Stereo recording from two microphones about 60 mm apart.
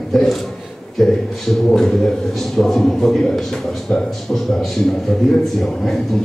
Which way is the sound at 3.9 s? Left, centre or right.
Centre.